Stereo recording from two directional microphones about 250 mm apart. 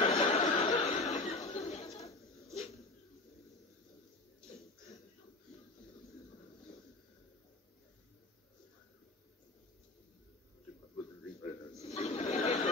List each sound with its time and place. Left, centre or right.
0.0 s chuckle: left
2.5 s dog: left
11.8 s chatter: left